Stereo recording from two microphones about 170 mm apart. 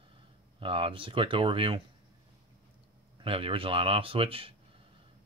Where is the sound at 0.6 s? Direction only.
30° right (ahead or behind).